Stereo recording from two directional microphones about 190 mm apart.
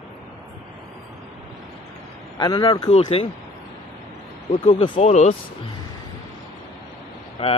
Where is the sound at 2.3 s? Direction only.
20° left (ahead or behind).